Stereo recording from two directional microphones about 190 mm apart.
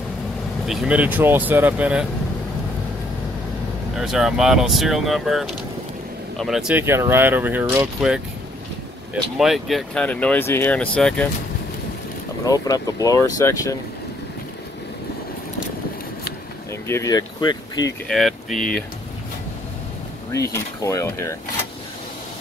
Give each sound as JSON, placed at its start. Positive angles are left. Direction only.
{"t": 0.7, "sound": "speech", "side_deg": -5}
{"t": 3.9, "sound": "speech", "side_deg": 0}
{"t": 9.1, "sound": "speech", "side_deg": 0}
{"t": 12.4, "sound": "speech", "side_deg": 20}
{"t": 16.8, "sound": "speech", "side_deg": 15}
{"t": 18.0, "sound": "speech", "side_deg": 0}
{"t": 20.5, "sound": "speech", "side_deg": 15}